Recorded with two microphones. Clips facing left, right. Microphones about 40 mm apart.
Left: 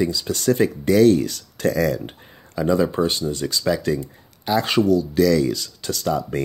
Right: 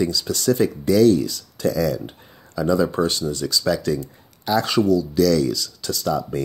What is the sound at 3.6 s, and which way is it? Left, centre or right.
Speech, left.